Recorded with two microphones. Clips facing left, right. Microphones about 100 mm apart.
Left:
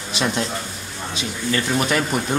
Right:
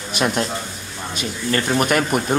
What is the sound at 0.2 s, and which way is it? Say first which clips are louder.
Speech: right 2 dB; 50° right (ahead or behind).